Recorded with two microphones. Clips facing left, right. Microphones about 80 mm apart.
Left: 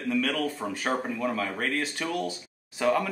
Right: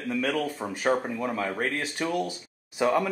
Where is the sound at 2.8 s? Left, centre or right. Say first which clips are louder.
Right 1 dB; centre.